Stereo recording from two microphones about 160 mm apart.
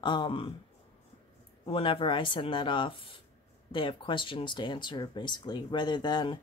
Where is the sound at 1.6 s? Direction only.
35° left (ahead or behind).